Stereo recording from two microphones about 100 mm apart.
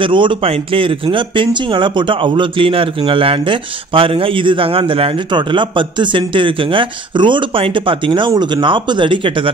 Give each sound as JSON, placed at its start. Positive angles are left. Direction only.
{"t": 0.0, "sound": "speech", "side_deg": -55}